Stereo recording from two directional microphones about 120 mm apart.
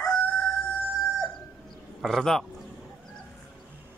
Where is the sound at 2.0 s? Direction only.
Centre (ahead or behind).